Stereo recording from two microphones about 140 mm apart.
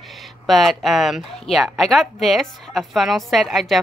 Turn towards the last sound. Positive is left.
turn(degrees=0)  # may be behind; listen again after turning